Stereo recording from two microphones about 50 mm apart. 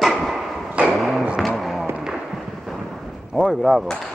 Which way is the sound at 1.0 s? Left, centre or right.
Centre.